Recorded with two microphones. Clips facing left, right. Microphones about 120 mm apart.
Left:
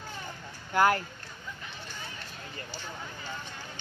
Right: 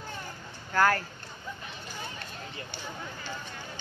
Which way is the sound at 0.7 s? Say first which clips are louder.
Left 1 dB; 20° left (ahead or behind).